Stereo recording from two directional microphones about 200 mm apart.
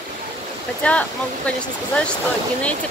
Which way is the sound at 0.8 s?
5° left (ahead or behind).